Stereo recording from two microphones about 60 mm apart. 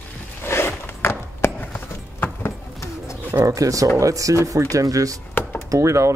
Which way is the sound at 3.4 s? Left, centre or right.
Right.